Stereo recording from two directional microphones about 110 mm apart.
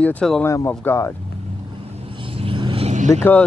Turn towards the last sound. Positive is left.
turn(degrees=15)  # may be behind; listen again after turning